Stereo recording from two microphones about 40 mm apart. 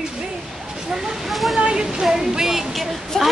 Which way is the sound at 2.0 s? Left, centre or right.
Centre.